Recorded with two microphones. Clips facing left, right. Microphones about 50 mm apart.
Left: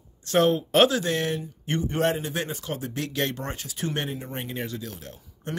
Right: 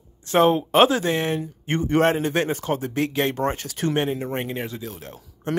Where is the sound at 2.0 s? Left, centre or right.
Right.